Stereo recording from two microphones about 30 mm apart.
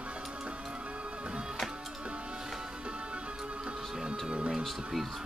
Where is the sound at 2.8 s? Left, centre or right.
Right.